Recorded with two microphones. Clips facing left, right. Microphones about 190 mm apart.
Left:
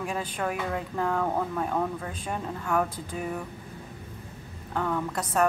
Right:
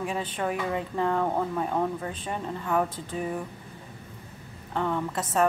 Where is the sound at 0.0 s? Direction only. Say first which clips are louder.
Right 1 dB; centre (ahead or behind).